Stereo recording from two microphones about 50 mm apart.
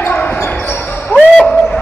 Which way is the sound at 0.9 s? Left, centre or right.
Centre.